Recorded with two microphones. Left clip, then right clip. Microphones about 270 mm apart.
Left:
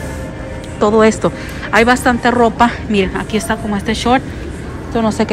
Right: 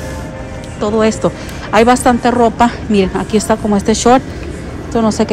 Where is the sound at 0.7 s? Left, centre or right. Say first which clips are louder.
Left 3 dB; centre.